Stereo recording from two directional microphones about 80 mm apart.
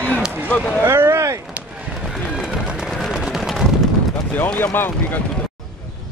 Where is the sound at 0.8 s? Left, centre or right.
Right.